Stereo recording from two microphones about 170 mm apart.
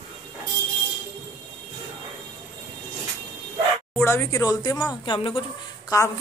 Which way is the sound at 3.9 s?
15° left (ahead or behind).